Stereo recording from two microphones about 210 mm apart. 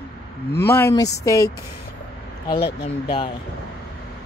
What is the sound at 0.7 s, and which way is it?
Speech, 10° left (ahead or behind).